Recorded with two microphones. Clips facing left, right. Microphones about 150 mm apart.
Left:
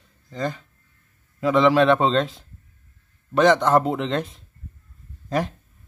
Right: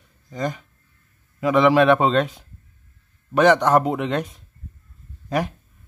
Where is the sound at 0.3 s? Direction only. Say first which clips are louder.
Right 1 dB; 15° right (ahead or behind).